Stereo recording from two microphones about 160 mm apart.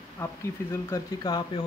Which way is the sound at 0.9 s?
25° left (ahead or behind).